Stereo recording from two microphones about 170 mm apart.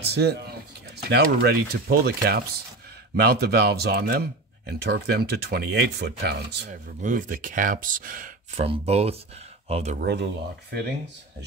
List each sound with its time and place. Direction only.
0.0 s speech: 75° right (ahead or behind)
6.7 s speech: 50° right (ahead or behind)
8.5 s speech: 35° right (ahead or behind)
9.9 s speech: 70° right (ahead or behind)